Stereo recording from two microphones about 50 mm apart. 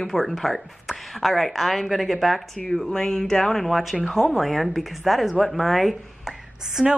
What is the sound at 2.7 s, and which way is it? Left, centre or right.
A woman's voice, centre.